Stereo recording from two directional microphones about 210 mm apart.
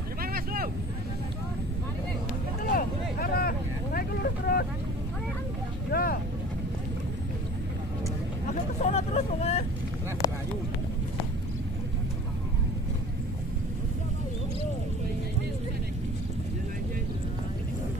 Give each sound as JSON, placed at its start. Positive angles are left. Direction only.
{"t": 0.2, "sound": "vehicle", "side_deg": -45}
{"t": 2.7, "sound": "vehicle", "side_deg": 45}
{"t": 5.9, "sound": "vehicle", "side_deg": 45}
{"t": 8.8, "sound": "vehicle", "side_deg": 30}